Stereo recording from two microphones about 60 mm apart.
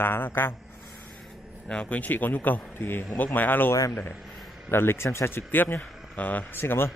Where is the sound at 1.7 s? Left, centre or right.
Left.